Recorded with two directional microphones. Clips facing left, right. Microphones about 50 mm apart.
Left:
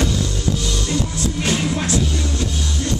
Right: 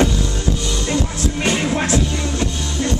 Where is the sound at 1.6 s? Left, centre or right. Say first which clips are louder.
Right 2 dB; right.